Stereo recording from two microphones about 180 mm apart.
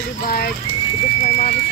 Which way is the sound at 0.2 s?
55° left (ahead or behind).